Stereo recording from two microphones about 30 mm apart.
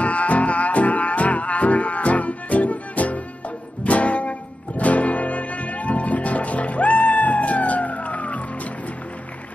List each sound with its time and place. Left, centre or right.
0.0 s music: left